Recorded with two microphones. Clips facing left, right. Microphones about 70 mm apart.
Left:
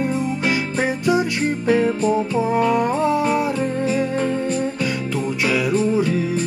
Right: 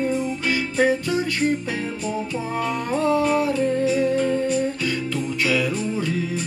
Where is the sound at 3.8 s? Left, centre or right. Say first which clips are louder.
Even; left.